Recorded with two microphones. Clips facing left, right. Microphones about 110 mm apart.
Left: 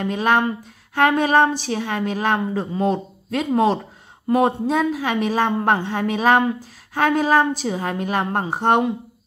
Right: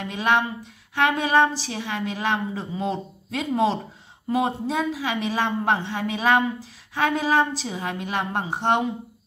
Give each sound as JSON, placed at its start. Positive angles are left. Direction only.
{"t": 0.0, "sound": "a woman's voice", "side_deg": 50}